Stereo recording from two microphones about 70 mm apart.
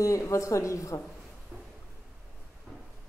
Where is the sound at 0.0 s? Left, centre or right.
Left.